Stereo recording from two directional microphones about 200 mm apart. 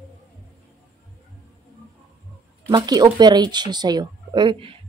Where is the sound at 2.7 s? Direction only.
20° right (ahead or behind).